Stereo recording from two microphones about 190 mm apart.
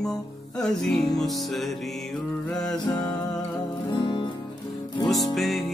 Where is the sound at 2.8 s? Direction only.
25° left (ahead or behind).